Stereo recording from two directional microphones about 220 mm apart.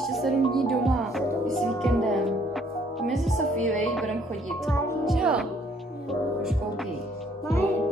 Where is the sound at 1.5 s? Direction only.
Centre (ahead or behind).